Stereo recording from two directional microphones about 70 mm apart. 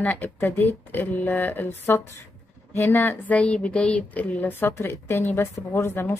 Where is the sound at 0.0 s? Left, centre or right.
Left.